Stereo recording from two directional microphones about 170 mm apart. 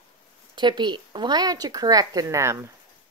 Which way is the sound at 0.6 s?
25° right (ahead or behind).